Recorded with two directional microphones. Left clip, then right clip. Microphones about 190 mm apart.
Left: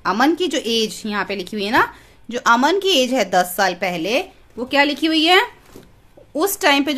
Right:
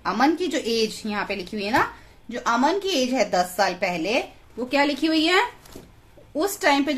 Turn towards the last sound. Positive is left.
turn(degrees=35)  # may be behind; listen again after turning